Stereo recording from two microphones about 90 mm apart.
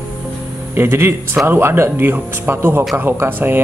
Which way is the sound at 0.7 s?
25° right (ahead or behind).